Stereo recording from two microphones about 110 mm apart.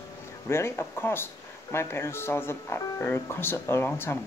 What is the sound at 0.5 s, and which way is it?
Speech, 25° left (ahead or behind).